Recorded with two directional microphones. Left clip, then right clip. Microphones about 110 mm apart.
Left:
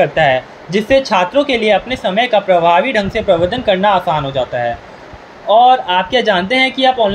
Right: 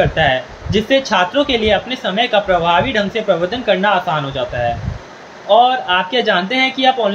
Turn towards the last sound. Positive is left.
turn(degrees=40)  # may be behind; listen again after turning